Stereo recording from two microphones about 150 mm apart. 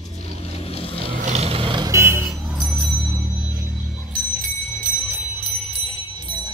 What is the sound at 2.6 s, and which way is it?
Music, centre (ahead or behind).